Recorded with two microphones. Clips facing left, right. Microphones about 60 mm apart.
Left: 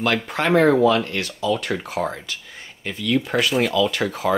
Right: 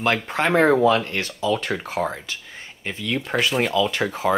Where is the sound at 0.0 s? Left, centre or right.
Right.